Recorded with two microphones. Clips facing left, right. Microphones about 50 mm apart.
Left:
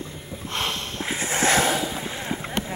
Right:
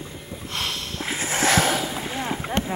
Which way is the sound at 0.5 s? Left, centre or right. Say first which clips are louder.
Left 1 dB; centre.